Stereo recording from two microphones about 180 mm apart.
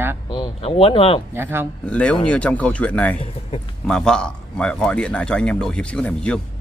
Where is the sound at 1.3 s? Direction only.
10° right (ahead or behind).